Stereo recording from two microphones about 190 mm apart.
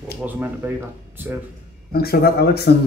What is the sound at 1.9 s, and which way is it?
Speech, 55° left (ahead or behind).